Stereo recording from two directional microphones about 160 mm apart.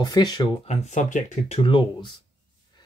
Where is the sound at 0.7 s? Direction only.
50° left (ahead or behind); by 2.1 s 30° left (ahead or behind).